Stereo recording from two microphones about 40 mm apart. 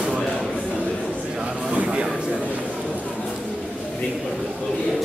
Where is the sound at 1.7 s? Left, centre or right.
Right.